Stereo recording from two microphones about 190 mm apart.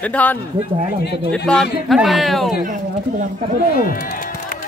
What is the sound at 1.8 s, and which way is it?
Speech, centre (ahead or behind).